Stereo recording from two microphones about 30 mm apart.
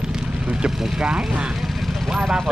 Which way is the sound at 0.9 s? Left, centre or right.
Right.